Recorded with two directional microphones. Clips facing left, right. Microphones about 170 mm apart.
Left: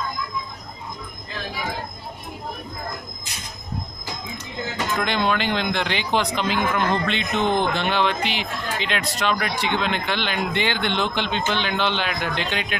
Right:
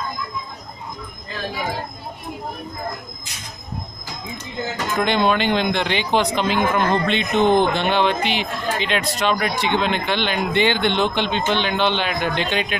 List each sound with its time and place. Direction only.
4.9 s speech: 20° right (ahead or behind)